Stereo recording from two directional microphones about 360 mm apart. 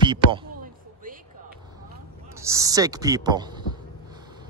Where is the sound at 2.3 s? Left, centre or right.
Centre.